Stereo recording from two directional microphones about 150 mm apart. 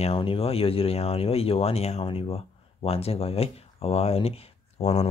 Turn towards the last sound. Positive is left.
turn(degrees=45)  # may be behind; listen again after turning